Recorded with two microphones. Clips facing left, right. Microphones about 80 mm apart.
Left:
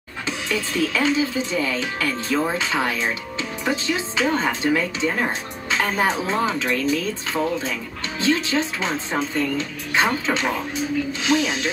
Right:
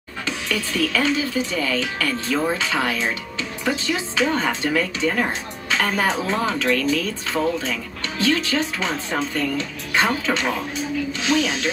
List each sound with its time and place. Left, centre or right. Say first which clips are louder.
0.5 s speech: even; left